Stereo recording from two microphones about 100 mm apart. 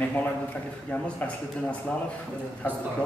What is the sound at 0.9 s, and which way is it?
Speech, 15° left (ahead or behind).